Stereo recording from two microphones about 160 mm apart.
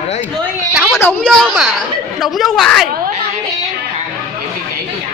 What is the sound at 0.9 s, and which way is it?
Speech, 15° left (ahead or behind).